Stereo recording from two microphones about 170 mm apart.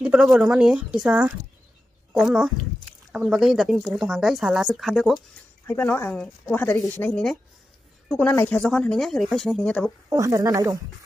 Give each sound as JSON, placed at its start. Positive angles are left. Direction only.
{"t": 0.0, "sound": "speech", "side_deg": -5}
{"t": 5.7, "sound": "speech", "side_deg": 10}
{"t": 10.0, "sound": "speech", "side_deg": -20}